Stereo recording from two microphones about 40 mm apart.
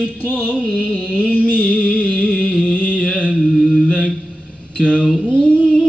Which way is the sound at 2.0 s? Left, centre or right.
Left.